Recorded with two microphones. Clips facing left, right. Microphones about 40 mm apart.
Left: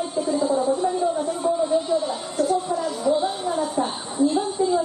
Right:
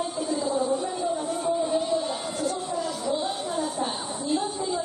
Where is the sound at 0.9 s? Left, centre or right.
Centre.